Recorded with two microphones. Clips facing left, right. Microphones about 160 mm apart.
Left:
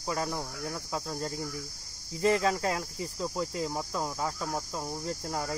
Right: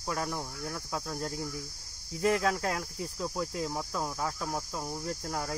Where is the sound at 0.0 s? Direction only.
5° left (ahead or behind).